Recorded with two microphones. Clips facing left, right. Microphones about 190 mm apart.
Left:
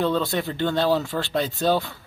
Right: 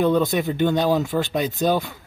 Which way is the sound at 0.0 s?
15° right (ahead or behind).